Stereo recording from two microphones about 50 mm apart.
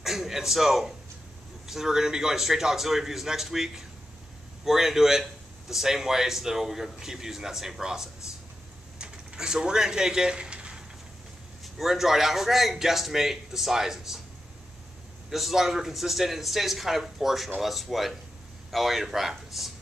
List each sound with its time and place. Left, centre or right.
0.0 s a man's voice: centre
8.9 s a sound: centre
11.6 s a man's voice: centre
15.2 s a man's voice: centre